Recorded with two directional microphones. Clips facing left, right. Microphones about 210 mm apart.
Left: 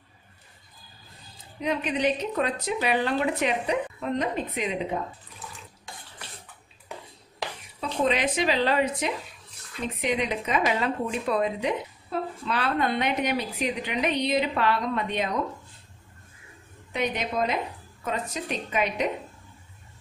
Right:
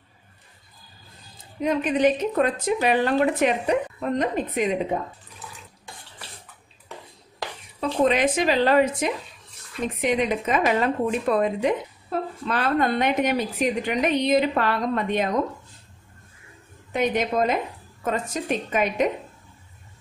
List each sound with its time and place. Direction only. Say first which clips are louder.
1.6 s a woman's voice: right 5 dB; 45° right (ahead or behind)
8.0 s a woman's voice: right 4 dB; 50° right (ahead or behind)
16.9 s a woman's voice: right 5 dB; 45° right (ahead or behind)